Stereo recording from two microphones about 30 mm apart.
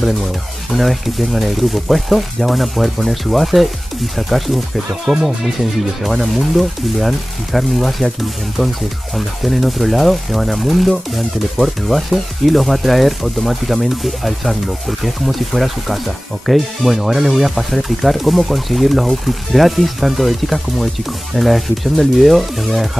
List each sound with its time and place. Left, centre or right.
0.7 s speech: centre
5.1 s speech: centre
6.0 s speech: centre
9.1 s speech: centre